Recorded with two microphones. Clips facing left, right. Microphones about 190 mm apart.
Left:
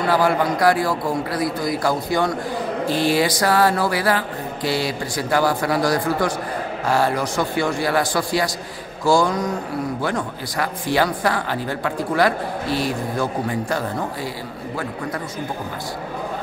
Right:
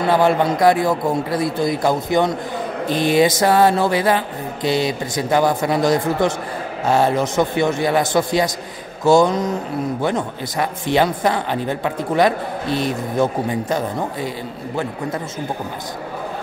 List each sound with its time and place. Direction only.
0.0 s a man's voice: 25° right (ahead or behind)